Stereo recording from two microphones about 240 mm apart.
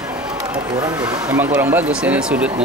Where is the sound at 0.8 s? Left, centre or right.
Centre.